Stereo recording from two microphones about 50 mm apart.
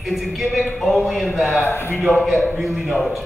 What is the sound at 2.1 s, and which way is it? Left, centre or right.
Speech, centre.